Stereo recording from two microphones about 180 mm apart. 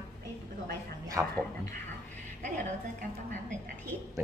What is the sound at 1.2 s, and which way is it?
Speech, 15° right (ahead or behind).